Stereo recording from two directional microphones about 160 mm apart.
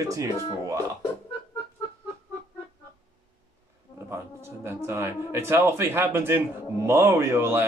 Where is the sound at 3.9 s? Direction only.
15° right (ahead or behind).